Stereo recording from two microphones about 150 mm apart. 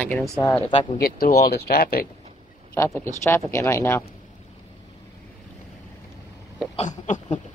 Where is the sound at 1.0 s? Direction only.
85° left.